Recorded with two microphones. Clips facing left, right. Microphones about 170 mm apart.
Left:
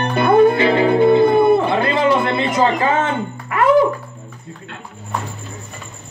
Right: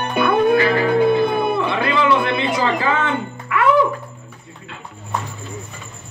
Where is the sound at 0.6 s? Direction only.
25° left (ahead or behind).